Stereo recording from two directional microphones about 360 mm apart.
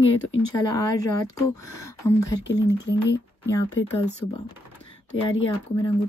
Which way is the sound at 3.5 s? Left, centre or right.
Centre.